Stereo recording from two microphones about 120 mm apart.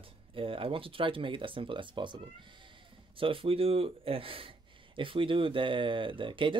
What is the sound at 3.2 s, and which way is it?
Speech, 50° right (ahead or behind).